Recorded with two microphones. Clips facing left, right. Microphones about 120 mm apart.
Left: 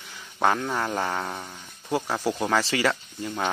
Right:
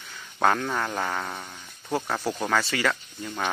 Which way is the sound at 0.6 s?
15° left (ahead or behind).